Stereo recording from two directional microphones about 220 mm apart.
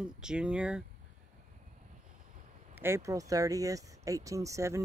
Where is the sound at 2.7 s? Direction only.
10° right (ahead or behind).